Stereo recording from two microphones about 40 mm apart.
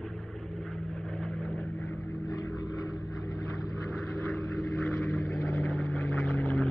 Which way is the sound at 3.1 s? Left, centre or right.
Centre.